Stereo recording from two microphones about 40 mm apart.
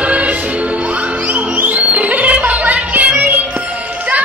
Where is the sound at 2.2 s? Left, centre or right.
Right.